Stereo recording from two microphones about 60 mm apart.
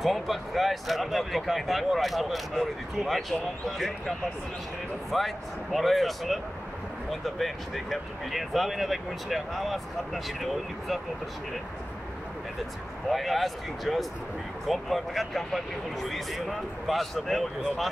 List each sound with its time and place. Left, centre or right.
0.0 s speech: centre
5.1 s speech: centre
13.1 s speech: centre